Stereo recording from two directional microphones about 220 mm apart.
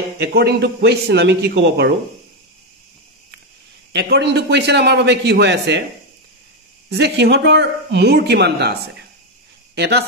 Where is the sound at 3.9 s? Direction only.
50° right (ahead or behind).